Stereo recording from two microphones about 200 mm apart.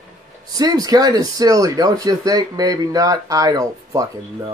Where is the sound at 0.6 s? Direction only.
20° right (ahead or behind).